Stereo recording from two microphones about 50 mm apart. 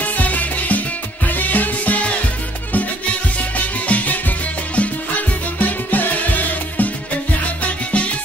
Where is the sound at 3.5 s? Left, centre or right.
Left.